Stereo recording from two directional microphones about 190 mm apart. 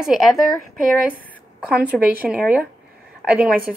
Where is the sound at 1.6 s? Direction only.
5° right (ahead or behind).